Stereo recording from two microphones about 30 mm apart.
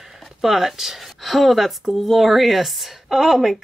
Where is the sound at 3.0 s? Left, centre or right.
Centre.